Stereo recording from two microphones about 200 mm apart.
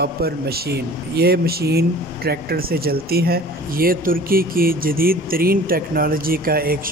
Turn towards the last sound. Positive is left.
turn(degrees=-50)  # may be behind; listen again after turning